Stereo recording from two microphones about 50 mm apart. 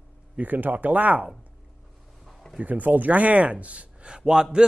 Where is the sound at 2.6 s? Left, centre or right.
Right.